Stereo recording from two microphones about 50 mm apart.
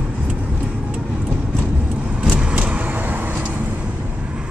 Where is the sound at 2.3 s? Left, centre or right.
Right.